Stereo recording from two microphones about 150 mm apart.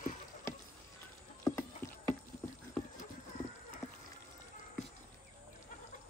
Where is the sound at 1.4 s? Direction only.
20° left (ahead or behind).